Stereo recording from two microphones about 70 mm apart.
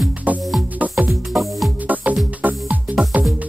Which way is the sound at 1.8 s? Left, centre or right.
Right.